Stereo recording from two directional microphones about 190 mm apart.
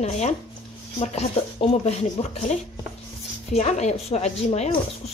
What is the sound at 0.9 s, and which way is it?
Speech, 30° left (ahead or behind).